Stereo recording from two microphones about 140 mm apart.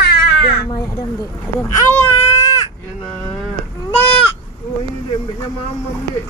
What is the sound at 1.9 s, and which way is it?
Baby cry, 20° left (ahead or behind).